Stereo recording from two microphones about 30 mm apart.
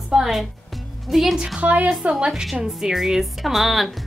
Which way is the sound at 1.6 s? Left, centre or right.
Right.